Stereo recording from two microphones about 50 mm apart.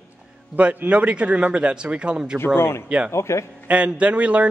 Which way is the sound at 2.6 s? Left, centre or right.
Left.